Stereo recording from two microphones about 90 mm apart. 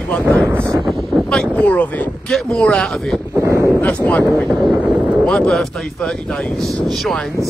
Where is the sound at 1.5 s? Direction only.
15° left (ahead or behind).